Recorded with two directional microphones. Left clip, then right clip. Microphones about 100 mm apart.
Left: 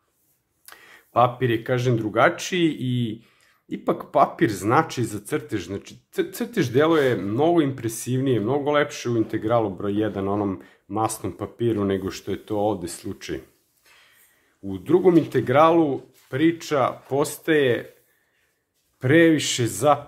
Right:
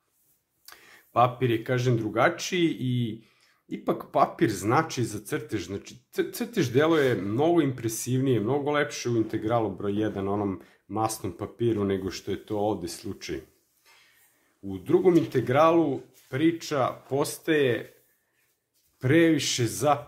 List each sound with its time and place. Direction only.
0.7 s speech: 25° left (ahead or behind)
14.7 s speech: 35° left (ahead or behind)
18.9 s speech: 30° left (ahead or behind)